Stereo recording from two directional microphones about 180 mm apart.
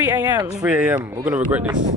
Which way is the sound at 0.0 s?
10° right (ahead or behind).